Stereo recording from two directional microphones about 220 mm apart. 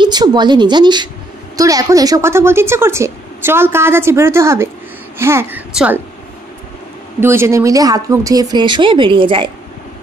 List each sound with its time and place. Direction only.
0.0 s a woman's voice: 20° right (ahead or behind)
7.2 s speech: 10° right (ahead or behind)